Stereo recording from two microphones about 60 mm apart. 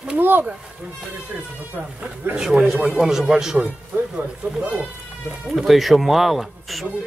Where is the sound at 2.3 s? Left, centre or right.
Centre.